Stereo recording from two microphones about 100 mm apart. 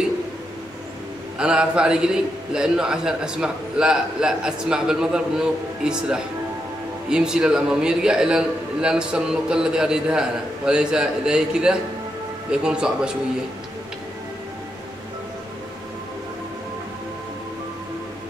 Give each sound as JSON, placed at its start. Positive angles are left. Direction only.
{"t": 1.4, "sound": "a man's voice", "side_deg": -10}